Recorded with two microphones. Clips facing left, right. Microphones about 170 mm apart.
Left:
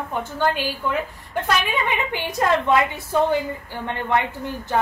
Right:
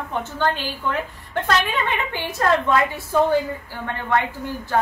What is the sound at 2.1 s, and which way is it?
A woman's voice, 15° left (ahead or behind).